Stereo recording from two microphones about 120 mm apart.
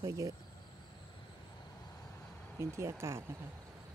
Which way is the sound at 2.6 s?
25° right (ahead or behind).